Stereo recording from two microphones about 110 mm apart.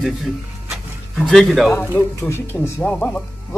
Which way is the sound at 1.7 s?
20° left (ahead or behind).